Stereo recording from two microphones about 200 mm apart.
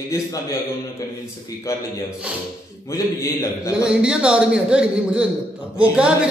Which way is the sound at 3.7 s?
5° right (ahead or behind).